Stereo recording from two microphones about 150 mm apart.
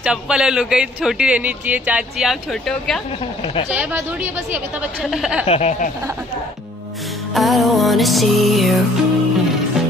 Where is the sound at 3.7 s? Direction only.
10° right (ahead or behind).